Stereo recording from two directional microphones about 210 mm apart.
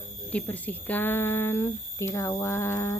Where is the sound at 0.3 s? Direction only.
5° left (ahead or behind).